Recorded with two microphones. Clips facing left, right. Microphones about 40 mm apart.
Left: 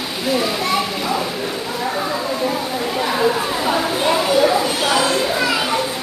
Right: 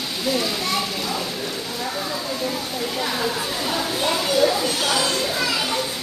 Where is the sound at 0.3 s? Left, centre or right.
Centre.